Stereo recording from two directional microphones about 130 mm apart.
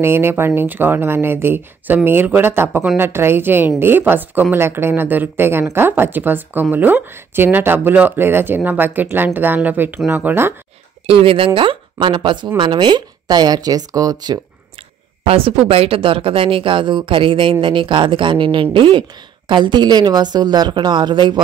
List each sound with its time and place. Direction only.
0.0 s speech: 20° right (ahead or behind)
11.1 s speech: 45° right (ahead or behind); by 14.4 s 30° right (ahead or behind)
15.2 s speech: 45° right (ahead or behind)